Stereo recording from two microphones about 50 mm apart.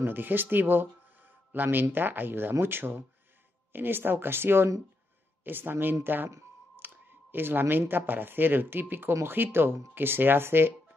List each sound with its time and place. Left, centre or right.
0.0 s speech: right
6.8 s clicking: right
7.9 s speech: right